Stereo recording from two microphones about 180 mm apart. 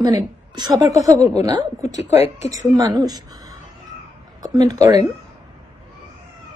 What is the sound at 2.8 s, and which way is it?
A woman's voice, 20° right (ahead or behind).